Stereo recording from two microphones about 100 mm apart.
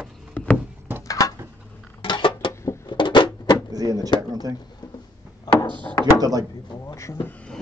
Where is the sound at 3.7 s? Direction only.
40° right (ahead or behind).